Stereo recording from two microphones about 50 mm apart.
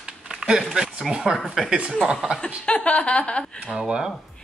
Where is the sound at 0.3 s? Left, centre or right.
Centre.